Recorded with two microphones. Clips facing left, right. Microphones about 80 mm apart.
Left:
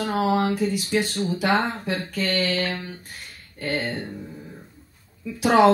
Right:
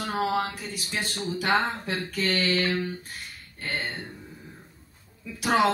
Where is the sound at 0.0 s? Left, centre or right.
Left.